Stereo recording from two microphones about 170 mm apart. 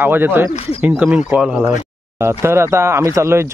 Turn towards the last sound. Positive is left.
turn(degrees=-15)  # may be behind; listen again after turning